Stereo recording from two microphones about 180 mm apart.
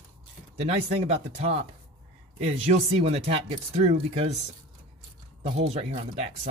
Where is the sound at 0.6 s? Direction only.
35° right (ahead or behind).